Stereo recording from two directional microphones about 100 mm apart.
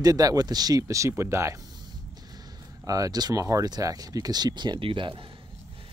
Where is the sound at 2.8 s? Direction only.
35° right (ahead or behind); by 5.2 s 55° right (ahead or behind).